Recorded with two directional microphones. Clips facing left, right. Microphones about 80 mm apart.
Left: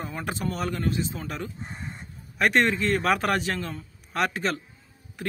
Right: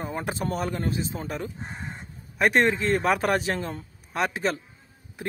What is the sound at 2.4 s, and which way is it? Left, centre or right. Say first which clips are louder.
A man's voice: right 1 dB; right.